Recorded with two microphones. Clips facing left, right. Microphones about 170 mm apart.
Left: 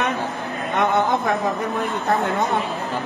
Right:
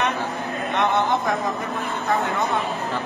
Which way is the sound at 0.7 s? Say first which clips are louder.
Left 2 dB; 50° left (ahead or behind).